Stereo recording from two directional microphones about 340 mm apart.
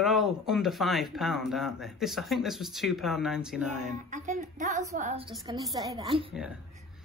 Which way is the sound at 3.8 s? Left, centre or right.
Right.